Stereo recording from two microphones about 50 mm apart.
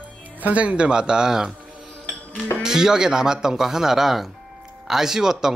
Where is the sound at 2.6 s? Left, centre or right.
Centre.